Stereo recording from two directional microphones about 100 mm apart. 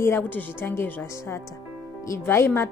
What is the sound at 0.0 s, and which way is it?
Speech, 20° left (ahead or behind).